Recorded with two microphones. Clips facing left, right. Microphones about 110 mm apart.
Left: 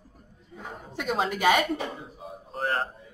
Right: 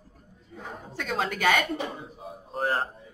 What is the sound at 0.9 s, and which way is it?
Speech, 15° left (ahead or behind).